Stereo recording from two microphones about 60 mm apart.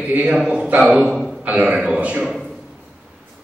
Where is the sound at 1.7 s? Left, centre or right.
Centre.